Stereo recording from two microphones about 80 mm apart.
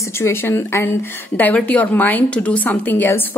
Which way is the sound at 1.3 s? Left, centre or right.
Centre.